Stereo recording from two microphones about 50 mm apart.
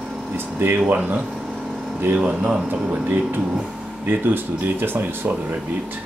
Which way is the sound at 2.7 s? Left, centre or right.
Right.